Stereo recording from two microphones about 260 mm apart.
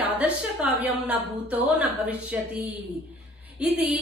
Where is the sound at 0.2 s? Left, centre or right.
Centre.